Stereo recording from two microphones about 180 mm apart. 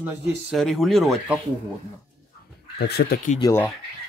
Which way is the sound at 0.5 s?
Centre (ahead or behind).